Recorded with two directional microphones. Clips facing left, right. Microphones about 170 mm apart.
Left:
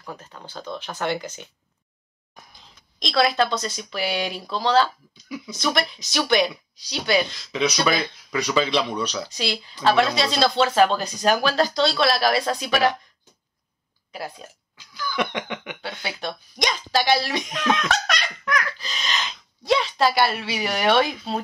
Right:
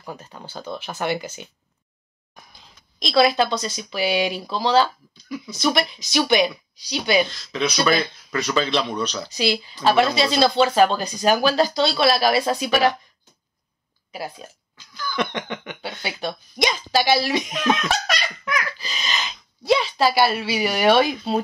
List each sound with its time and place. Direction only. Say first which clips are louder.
0.0 s speech: right 2 dB; 10° right (ahead or behind)
3.0 s speech: right 3 dB; 5° right (ahead or behind)
7.2 s speech: left 1 dB; 15° left (ahead or behind)
9.3 s speech: right 5 dB; 5° right (ahead or behind)
14.1 s speech: right 2 dB; 5° right (ahead or behind)
14.8 s a sound: even; 10° left (ahead or behind)
15.8 s speech: right 4 dB; 5° right (ahead or behind)